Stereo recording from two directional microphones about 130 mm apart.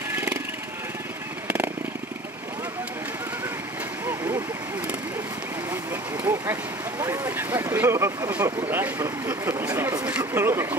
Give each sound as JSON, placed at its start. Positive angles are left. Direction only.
{"t": 0.1, "sound": "vehicle", "side_deg": -15}
{"t": 4.0, "sound": "vehicle", "side_deg": -25}
{"t": 6.2, "sound": "speech", "side_deg": -20}